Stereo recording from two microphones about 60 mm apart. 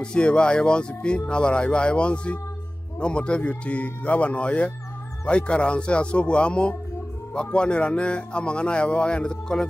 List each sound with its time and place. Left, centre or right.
0.0 s speech: centre